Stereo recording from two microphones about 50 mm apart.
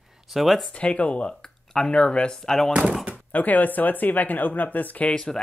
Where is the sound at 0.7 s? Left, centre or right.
Left.